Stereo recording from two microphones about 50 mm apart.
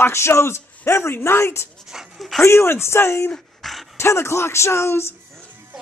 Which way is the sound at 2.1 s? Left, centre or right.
Centre.